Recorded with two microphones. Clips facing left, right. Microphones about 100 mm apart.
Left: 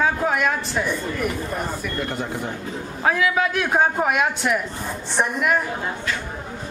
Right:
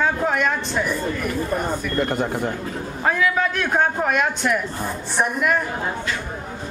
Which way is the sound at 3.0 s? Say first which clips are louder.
Even; 5° left (ahead or behind).